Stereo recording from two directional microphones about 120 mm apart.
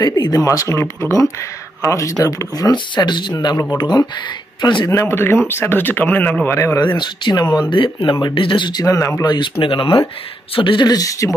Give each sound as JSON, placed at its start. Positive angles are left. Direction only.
{"t": 0.0, "sound": "speech", "side_deg": 30}
{"t": 4.8, "sound": "speech", "side_deg": 25}
{"t": 6.4, "sound": "speech", "side_deg": 25}
{"t": 6.9, "sound": "speech", "side_deg": 40}